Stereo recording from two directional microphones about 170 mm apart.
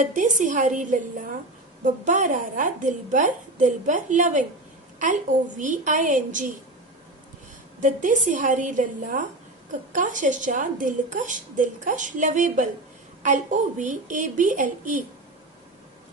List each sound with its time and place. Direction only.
0.0 s a woman's voice: 50° right (ahead or behind)
7.8 s a woman's voice: 50° right (ahead or behind)